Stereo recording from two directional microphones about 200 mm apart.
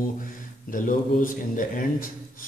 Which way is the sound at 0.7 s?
40° left (ahead or behind).